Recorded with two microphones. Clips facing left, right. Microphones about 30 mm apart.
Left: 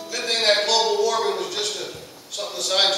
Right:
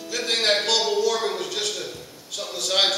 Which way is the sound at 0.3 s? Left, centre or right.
Centre.